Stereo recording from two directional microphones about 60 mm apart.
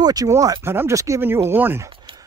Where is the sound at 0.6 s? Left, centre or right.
Right.